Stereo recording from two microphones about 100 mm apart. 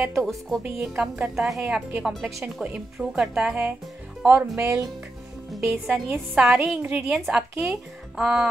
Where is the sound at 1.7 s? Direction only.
15° right (ahead or behind).